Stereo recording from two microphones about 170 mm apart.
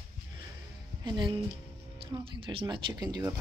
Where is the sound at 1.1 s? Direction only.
25° right (ahead or behind).